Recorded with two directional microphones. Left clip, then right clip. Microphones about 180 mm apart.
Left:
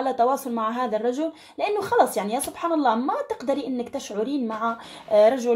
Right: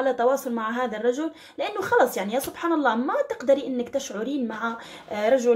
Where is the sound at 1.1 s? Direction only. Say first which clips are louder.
Left 2 dB; 50° left (ahead or behind).